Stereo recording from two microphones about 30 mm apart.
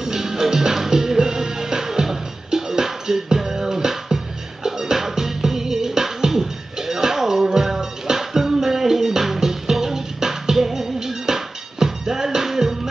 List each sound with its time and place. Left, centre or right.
0.0 s music: centre